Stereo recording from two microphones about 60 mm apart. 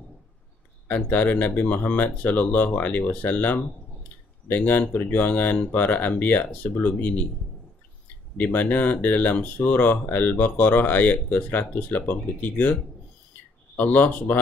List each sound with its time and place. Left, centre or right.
0.8 s speech: left
8.4 s speech: left
13.7 s speech: left